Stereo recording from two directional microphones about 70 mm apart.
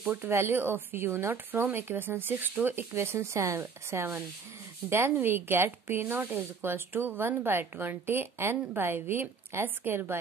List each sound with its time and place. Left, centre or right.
0.0 s speech: right